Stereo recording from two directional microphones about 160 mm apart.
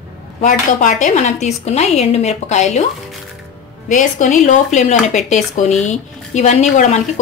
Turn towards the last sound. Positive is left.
turn(degrees=45)  # may be behind; listen again after turning